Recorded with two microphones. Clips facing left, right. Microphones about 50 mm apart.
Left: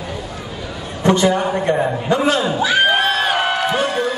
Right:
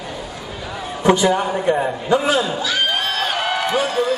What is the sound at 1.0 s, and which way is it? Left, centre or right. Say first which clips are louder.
A man's voice: left 1 dB; centre.